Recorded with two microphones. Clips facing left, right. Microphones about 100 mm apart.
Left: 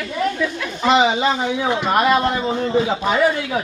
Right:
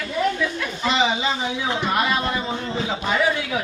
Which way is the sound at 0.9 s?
55° left (ahead or behind).